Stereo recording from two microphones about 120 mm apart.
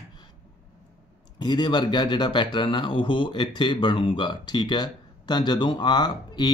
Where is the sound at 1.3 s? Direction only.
40° left (ahead or behind).